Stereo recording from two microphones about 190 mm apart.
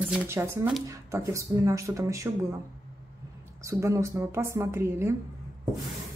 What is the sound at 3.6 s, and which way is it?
Speech, 15° right (ahead or behind).